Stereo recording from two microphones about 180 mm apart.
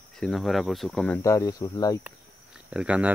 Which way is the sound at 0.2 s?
Centre (ahead or behind).